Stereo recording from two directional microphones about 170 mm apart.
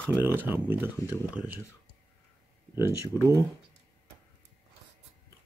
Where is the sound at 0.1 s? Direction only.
10° right (ahead or behind).